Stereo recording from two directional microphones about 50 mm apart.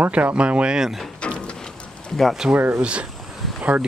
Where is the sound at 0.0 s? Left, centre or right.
Right.